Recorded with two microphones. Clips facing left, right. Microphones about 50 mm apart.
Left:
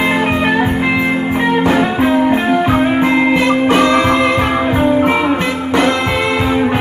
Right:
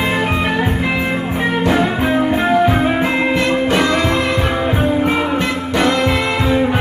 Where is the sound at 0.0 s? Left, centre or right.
Centre.